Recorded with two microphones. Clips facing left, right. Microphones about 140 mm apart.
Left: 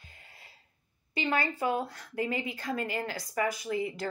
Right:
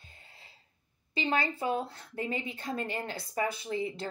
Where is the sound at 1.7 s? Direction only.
30° right (ahead or behind).